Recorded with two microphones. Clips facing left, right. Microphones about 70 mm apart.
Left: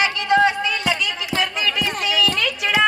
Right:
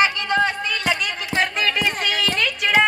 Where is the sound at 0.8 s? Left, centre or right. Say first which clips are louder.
Even; right.